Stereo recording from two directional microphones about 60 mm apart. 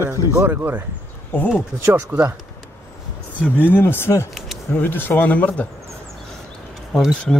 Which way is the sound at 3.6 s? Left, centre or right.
Left.